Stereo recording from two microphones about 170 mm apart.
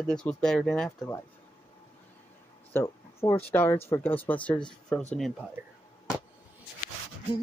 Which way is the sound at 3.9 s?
10° left (ahead or behind).